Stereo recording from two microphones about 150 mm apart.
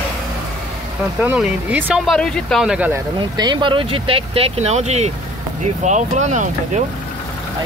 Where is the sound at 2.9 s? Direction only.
30° right (ahead or behind); by 6.8 s 50° right (ahead or behind).